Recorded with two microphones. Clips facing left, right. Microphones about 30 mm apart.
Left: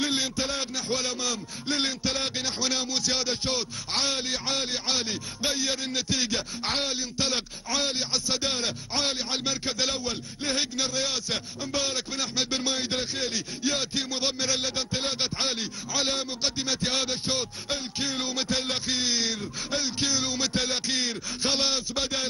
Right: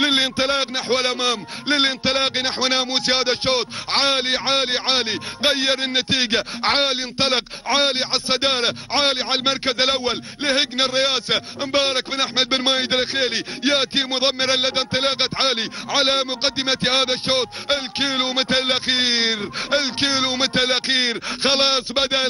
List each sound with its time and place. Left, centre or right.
0.0 s a man's voice: right